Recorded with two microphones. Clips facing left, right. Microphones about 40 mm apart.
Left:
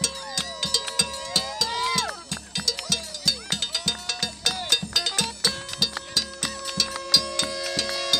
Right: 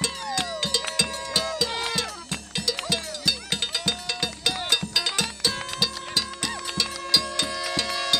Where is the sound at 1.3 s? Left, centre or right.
Centre.